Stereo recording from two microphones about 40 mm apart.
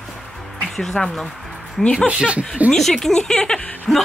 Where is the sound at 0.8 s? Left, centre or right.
Centre.